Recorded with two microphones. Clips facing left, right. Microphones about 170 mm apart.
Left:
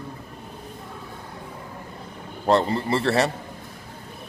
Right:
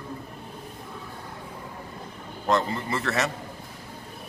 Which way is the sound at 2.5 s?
35° left (ahead or behind).